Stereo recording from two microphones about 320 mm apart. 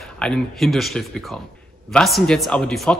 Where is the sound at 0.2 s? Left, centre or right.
Centre.